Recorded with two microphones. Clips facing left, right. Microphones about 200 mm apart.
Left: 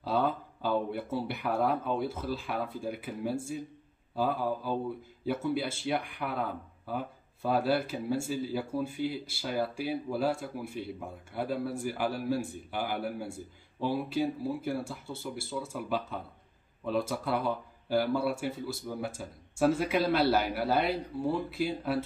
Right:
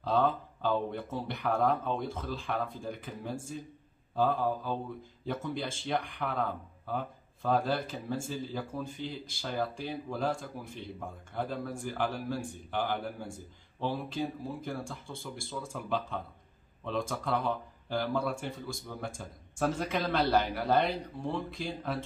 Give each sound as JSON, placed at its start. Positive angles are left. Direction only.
{"t": 0.0, "sound": "speech", "side_deg": 10}